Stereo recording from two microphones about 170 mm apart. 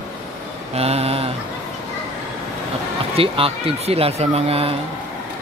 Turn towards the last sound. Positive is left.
turn(degrees=-35)  # may be behind; listen again after turning